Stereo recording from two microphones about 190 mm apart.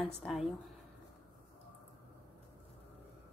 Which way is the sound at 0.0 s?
Centre (ahead or behind).